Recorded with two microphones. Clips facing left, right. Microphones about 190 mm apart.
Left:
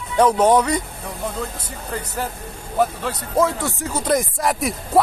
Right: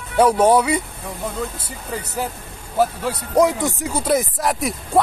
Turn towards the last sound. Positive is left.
turn(degrees=0)  # may be behind; listen again after turning